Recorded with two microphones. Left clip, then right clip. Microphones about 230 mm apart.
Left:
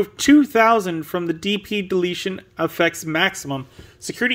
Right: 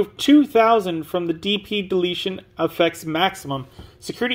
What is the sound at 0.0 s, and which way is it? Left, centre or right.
Speech, left.